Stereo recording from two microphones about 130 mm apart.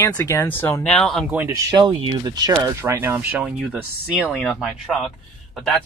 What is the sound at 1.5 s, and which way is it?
Speech, 30° right (ahead or behind).